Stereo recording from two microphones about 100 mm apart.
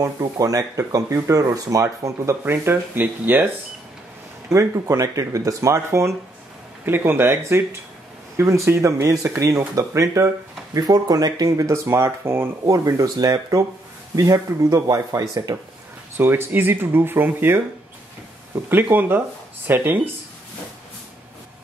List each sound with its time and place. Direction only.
0.0 s speech: 35° right (ahead or behind)
4.5 s speech: 30° right (ahead or behind)
16.2 s speech: 20° right (ahead or behind)
18.7 s speech: 20° right (ahead or behind)